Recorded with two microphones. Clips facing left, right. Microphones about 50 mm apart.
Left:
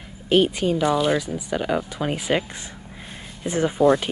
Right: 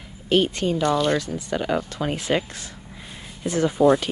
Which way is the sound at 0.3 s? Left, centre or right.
Centre.